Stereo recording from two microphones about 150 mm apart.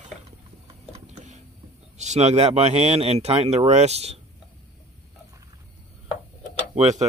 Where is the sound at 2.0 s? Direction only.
50° right (ahead or behind).